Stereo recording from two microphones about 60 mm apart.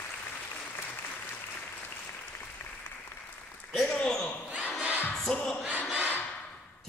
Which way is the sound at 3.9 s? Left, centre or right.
Centre.